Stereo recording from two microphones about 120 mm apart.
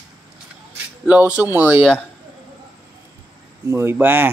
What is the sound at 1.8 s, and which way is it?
Speech, 5° left (ahead or behind).